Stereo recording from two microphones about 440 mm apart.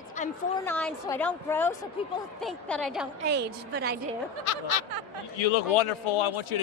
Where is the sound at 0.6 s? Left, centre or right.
Centre.